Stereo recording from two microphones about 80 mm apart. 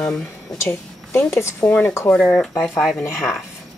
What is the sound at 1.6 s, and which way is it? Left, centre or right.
Speech, centre.